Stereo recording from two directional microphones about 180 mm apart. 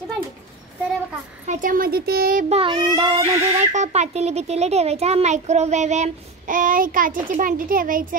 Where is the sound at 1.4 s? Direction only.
50° right (ahead or behind).